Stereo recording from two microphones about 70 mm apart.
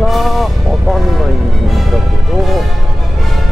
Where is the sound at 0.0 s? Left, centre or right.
Centre.